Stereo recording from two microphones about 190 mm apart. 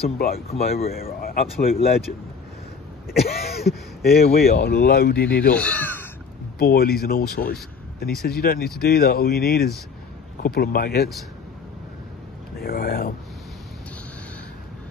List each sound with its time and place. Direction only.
0.5 s speech: 35° left (ahead or behind)
0.8 s speech: 50° left (ahead or behind)
3.1 s speech: 55° left (ahead or behind)
5.5 s speech: 5° left (ahead or behind)
6.6 s speech: 50° left (ahead or behind)
12.5 s speech: 55° left (ahead or behind)